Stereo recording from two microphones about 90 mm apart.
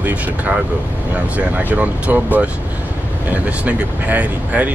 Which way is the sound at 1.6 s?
20° right (ahead or behind).